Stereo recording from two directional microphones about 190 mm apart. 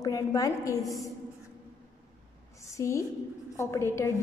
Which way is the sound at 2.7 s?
15° left (ahead or behind).